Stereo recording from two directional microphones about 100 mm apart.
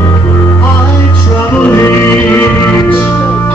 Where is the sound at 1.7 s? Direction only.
20° left (ahead or behind).